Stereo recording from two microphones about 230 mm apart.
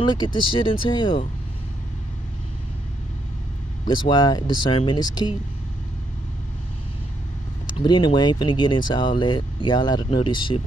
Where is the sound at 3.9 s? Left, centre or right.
Centre.